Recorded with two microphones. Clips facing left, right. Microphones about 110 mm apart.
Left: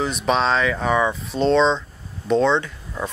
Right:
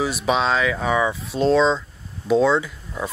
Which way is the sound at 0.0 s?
5° right (ahead or behind).